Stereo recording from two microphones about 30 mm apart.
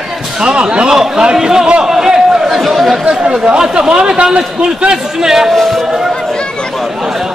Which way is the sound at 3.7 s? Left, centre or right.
Right.